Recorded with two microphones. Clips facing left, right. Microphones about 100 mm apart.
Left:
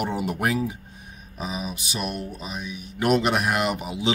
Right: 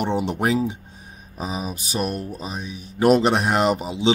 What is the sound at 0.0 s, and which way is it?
Speech, 25° right (ahead or behind).